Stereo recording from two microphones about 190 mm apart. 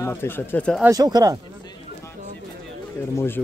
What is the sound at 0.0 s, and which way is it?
Speech, 10° left (ahead or behind).